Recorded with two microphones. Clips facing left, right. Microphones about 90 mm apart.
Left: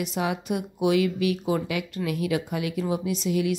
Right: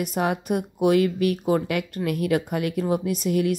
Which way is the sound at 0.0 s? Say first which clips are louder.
Right 3 dB; 50° right (ahead or behind).